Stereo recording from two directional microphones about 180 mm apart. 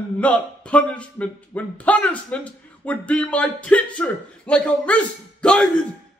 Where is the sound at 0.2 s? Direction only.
5° left (ahead or behind).